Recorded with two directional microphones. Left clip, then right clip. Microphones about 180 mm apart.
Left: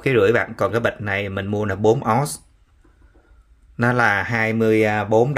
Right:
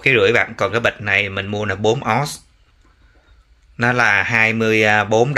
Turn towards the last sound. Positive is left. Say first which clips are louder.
# right 3 dB
turn(degrees=15)  # may be behind; listen again after turning